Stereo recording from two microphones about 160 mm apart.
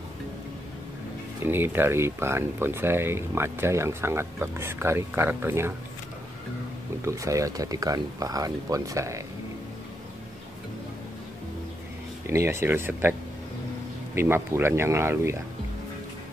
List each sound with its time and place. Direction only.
1.4 s speech: 15° right (ahead or behind)
7.1 s speech: 20° right (ahead or behind)
12.3 s speech: 15° right (ahead or behind)
14.1 s speech: 15° right (ahead or behind)